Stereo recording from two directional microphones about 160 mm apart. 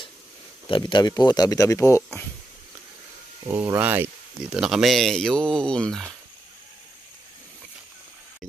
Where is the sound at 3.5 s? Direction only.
15° right (ahead or behind); by 6.1 s 5° left (ahead or behind).